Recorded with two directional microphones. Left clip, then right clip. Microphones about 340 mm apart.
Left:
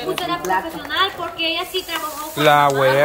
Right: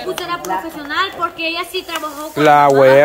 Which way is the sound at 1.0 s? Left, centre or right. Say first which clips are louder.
Right 2 dB; centre.